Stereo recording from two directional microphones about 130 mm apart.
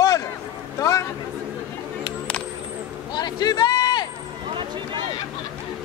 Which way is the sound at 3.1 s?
30° left (ahead or behind).